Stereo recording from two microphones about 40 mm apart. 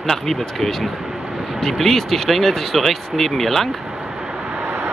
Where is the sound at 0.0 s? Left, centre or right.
Centre.